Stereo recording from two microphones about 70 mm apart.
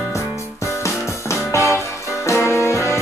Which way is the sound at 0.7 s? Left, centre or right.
Left.